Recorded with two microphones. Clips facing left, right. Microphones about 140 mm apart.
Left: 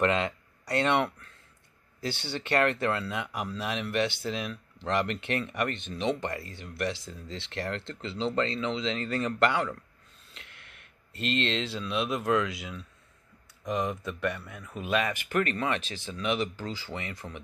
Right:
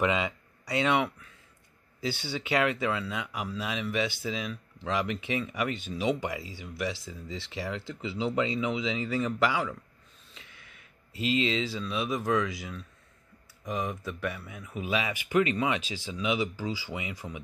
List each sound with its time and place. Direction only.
0.0 s speech: 5° right (ahead or behind)
10.5 s a sound: centre (ahead or behind)
11.1 s speech: 65° left (ahead or behind)
11.4 s speech: centre (ahead or behind)